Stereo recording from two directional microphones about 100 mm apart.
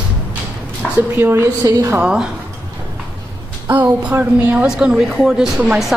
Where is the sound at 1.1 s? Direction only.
25° right (ahead or behind).